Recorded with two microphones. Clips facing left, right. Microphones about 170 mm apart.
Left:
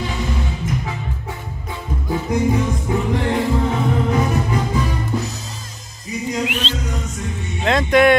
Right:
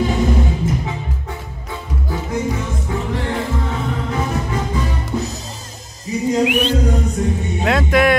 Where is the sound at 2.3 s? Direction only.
15° left (ahead or behind).